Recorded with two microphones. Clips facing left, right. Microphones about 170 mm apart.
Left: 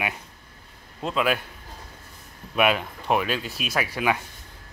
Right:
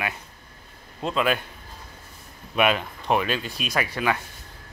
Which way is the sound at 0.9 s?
5° left (ahead or behind).